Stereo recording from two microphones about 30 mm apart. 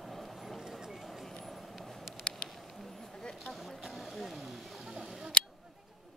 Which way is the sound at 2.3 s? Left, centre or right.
Left.